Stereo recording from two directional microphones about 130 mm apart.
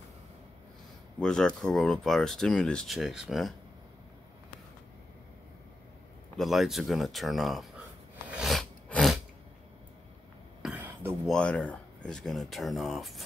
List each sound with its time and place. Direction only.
1.2 s speech: 5° left (ahead or behind)
6.3 s speech: centre (ahead or behind)
8.3 s a sound: centre (ahead or behind)
10.6 s throat clearing: 15° right (ahead or behind)
11.2 s speech: 5° left (ahead or behind)